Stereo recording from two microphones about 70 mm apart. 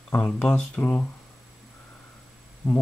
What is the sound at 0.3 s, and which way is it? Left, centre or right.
Mantra, centre.